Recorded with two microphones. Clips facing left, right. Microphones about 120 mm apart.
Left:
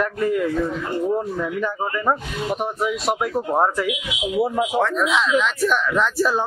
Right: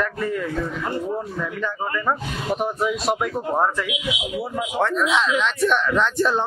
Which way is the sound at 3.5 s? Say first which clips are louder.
Left 2 dB; 15° left (ahead or behind).